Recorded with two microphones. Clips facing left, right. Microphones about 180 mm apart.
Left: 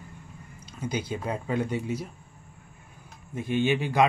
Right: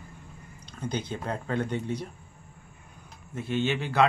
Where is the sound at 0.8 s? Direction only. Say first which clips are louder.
Left 1 dB; 10° left (ahead or behind).